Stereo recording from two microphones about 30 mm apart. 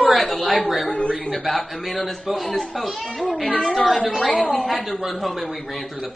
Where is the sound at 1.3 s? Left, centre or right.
Centre.